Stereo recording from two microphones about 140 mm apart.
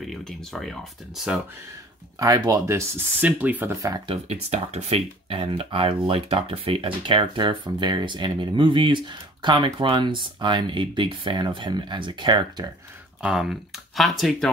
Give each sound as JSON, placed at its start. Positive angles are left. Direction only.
{"t": 0.0, "sound": "speech", "side_deg": 0}
{"t": 2.1, "sound": "speech", "side_deg": -25}
{"t": 3.7, "sound": "speech", "side_deg": -25}
{"t": 4.1, "sound": "speech", "side_deg": -50}
{"t": 13.2, "sound": "speech", "side_deg": -5}